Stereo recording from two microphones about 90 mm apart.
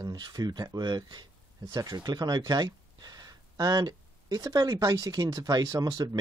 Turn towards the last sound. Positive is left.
turn(degrees=-40)  # may be behind; listen again after turning